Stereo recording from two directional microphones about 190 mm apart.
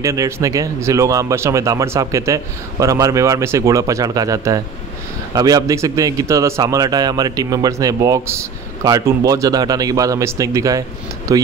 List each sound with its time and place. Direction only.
0.0 s a man's voice: 15° right (ahead or behind)